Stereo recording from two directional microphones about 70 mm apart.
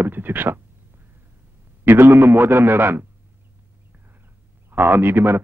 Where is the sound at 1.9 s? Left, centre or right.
Right.